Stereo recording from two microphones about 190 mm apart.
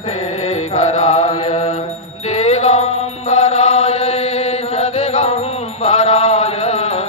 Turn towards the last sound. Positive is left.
turn(degrees=35)  # may be behind; listen again after turning